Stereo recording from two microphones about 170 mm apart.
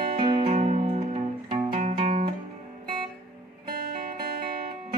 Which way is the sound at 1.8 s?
45° right (ahead or behind).